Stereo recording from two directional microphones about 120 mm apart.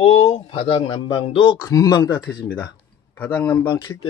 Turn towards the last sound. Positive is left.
turn(degrees=35)  # may be behind; listen again after turning